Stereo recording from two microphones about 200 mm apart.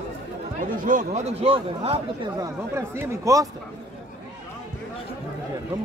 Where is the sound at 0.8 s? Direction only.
35° right (ahead or behind).